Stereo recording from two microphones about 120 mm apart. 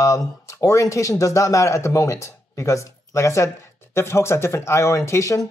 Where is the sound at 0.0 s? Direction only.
25° left (ahead or behind).